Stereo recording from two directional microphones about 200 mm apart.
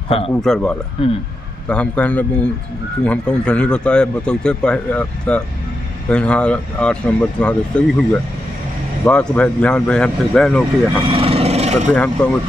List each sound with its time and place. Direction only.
0.4 s speech: 5° left (ahead or behind)
1.0 s speech: 25° left (ahead or behind)
1.7 s speech: 5° left (ahead or behind)
11.1 s vehicle: 30° right (ahead or behind)
11.9 s speech: 5° left (ahead or behind)